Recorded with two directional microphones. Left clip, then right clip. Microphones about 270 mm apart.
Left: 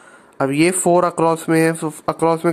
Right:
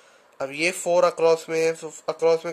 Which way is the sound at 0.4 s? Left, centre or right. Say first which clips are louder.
Left 9 dB; centre.